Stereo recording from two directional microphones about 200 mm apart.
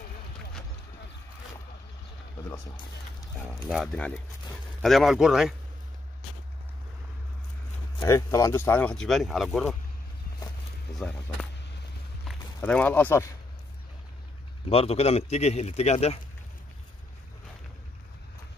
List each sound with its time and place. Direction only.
2.3 s speech: 20° left (ahead or behind)
3.6 s speech: centre (ahead or behind)
8.0 s speech: 15° left (ahead or behind)
12.3 s speech: 5° left (ahead or behind)
14.7 s speech: 30° left (ahead or behind)